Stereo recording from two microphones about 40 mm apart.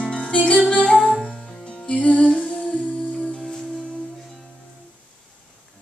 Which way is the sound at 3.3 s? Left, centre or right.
Centre.